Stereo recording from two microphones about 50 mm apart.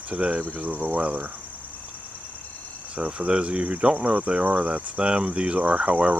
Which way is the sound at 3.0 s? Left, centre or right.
Centre.